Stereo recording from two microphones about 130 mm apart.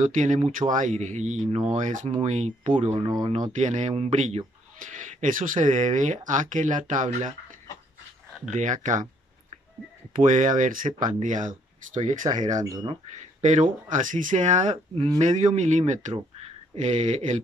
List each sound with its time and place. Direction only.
0.0 s speech: 75° right (ahead or behind)
2.1 s speech: 60° right (ahead or behind)
2.9 s speech: 35° right (ahead or behind)
3.5 s speech: 65° right (ahead or behind)
4.7 s speech: 75° right (ahead or behind)
8.5 s speech: 70° right (ahead or behind)
10.1 s speech: 80° right; by 17.4 s 60° right (ahead or behind)